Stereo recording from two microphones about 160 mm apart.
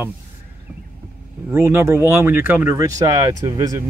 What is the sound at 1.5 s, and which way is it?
Speech, 15° right (ahead or behind).